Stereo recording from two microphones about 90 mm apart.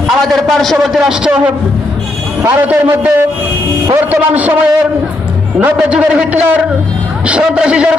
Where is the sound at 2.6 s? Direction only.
15° right (ahead or behind).